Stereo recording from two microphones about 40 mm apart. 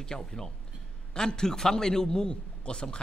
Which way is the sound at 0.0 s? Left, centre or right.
Centre.